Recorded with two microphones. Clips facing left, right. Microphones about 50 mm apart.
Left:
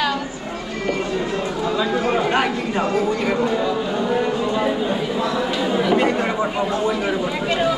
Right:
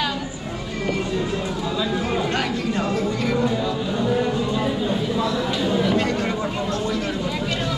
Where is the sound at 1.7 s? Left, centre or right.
Left.